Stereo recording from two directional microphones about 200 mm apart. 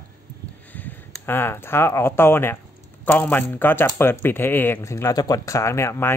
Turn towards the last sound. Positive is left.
turn(degrees=10)  # may be behind; listen again after turning